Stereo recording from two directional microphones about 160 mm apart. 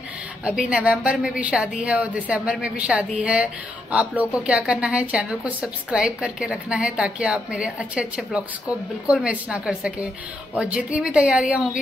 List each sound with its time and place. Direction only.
0.5 s a woman's voice: 10° right (ahead or behind)